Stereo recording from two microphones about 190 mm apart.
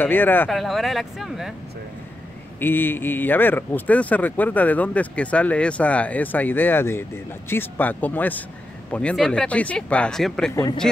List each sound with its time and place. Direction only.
0.0 s speech: 10° left (ahead or behind)
2.6 s speech: 10° left (ahead or behind)
10.5 s a man's voice: 20° left (ahead or behind)